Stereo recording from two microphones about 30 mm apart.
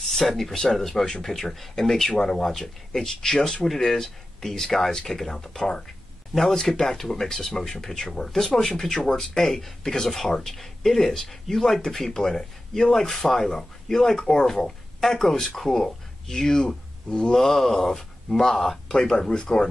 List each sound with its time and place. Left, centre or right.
0.1 s speech: centre
12.1 s speech: left
13.0 s speech: centre
18.9 s speech: centre